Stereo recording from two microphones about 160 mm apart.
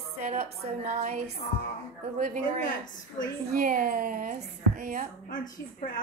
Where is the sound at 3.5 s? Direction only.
55° right (ahead or behind).